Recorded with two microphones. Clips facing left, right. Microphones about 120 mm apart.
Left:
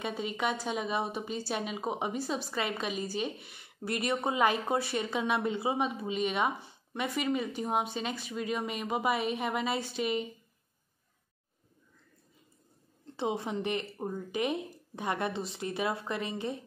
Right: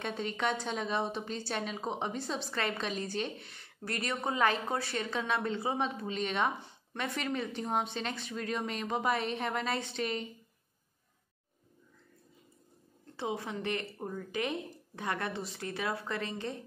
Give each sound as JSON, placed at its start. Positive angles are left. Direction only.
{"t": 0.0, "sound": "a woman's voice", "side_deg": 10}
{"t": 13.0, "sound": "a woman's voice", "side_deg": 20}